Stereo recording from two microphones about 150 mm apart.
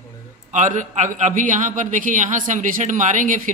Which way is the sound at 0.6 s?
55° right (ahead or behind).